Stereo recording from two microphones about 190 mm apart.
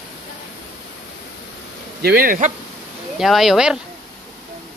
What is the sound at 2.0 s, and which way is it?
Speech, 50° right (ahead or behind).